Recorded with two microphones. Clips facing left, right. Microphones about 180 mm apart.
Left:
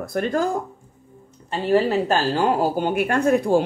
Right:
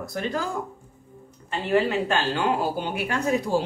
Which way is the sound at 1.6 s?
35° left (ahead or behind).